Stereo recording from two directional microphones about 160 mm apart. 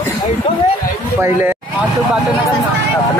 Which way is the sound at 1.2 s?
15° right (ahead or behind).